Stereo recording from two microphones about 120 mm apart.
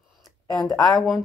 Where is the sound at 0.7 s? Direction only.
Centre (ahead or behind).